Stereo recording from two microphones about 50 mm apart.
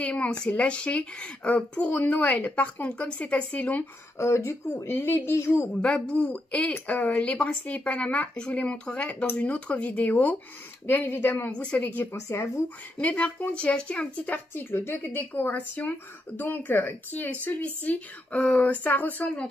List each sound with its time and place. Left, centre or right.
0.0 s speech: left
4.2 s speech: left
6.0 s speech: centre
10.9 s a woman's voice: left
11.5 s speech: left
14.2 s a woman's voice: left